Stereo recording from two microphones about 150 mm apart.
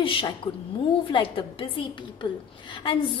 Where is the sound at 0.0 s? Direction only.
35° left (ahead or behind).